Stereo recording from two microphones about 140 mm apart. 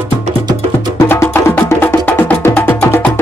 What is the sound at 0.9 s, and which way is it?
Music, 20° left (ahead or behind).